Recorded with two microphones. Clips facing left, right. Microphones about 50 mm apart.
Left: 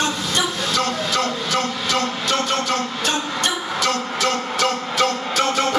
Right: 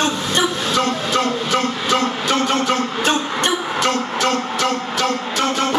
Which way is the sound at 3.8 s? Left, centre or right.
Right.